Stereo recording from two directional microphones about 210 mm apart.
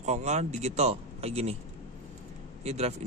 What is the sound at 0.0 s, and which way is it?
Speech, 35° right (ahead or behind).